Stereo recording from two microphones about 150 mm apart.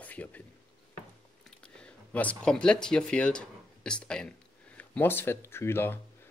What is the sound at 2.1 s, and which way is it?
Speech, 10° left (ahead or behind).